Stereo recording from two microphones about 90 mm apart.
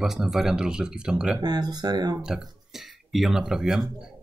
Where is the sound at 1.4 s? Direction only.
50° right (ahead or behind).